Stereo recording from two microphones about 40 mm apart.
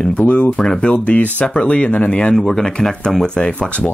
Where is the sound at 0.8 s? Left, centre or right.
Left.